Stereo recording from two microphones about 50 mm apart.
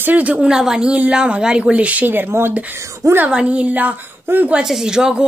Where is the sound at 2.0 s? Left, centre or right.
Right.